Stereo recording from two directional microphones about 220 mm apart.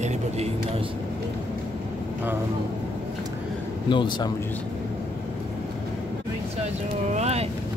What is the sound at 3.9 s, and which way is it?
Speech, 20° left (ahead or behind).